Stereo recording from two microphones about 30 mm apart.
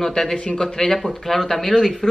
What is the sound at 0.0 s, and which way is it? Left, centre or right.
Speech, centre.